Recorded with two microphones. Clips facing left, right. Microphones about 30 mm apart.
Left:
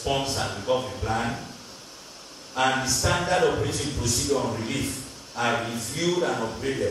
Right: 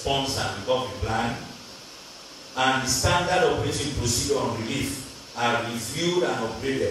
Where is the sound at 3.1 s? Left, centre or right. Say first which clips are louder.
Right 1 dB; centre.